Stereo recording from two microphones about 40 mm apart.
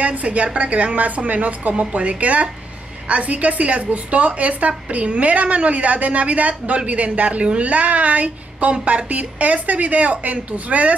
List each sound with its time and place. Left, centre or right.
0.0 s a woman's voice: right